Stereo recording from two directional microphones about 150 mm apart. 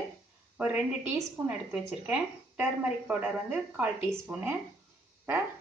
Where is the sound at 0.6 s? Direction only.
10° right (ahead or behind).